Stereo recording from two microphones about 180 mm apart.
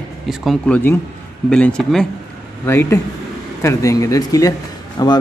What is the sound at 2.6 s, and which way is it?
A man's voice, 15° left (ahead or behind).